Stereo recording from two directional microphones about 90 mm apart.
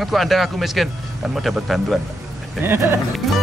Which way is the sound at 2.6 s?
25° right (ahead or behind).